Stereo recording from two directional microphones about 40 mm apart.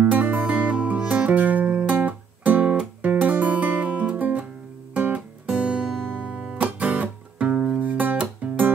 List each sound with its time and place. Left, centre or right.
0.4 s music: right
5.1 s music: right
6.8 s music: right
7.8 s music: right